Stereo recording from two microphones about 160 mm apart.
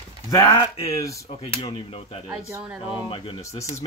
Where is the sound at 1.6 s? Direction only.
35° left (ahead or behind).